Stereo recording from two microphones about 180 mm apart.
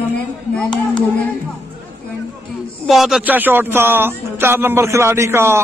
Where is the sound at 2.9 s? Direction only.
Centre (ahead or behind).